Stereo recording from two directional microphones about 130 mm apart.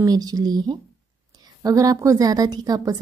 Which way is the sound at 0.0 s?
30° right (ahead or behind).